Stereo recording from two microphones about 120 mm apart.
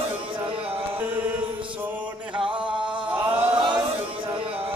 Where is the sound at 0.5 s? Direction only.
50° right (ahead or behind).